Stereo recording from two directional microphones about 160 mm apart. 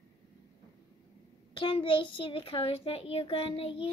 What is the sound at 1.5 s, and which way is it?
A child's voice, 30° left (ahead or behind).